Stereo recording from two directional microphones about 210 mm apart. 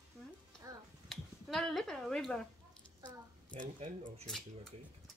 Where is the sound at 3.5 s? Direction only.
40° right (ahead or behind).